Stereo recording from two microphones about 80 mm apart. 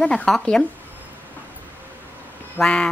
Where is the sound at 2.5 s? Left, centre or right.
Centre.